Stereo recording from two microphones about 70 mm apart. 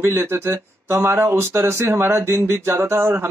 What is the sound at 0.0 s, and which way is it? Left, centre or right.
Speech, right.